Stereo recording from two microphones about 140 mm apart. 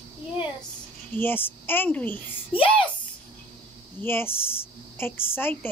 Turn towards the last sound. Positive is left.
turn(degrees=15)  # may be behind; listen again after turning